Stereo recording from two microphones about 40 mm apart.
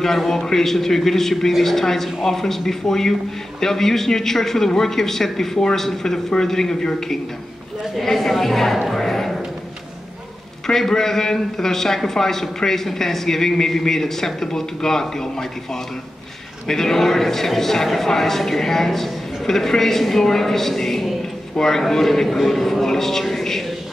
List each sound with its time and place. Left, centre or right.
0.2 s a man's voice: centre
8.7 s music: centre
10.7 s a man's voice: centre